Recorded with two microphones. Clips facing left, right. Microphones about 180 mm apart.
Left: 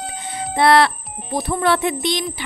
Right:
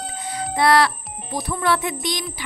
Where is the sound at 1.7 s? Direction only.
25° left (ahead or behind).